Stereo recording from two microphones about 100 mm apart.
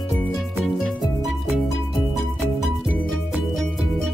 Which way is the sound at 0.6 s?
5° left (ahead or behind).